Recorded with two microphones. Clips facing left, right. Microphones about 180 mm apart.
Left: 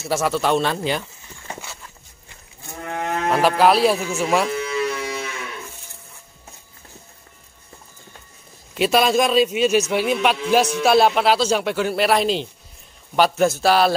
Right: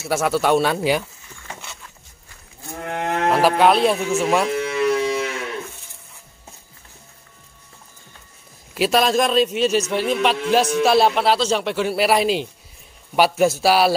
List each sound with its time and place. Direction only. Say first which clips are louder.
0.0 s a man's voice: right 1 dB; 5° right (ahead or behind)
2.8 s cattle: right 1 dB; 60° right (ahead or behind)
3.3 s a man's voice: right 1 dB; centre (ahead or behind)
4.6 s a sound: right 3 dB; 60° right (ahead or behind)
8.7 s a man's voice: even; centre (ahead or behind)